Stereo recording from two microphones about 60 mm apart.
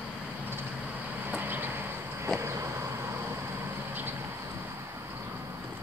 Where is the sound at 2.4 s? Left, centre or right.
Right.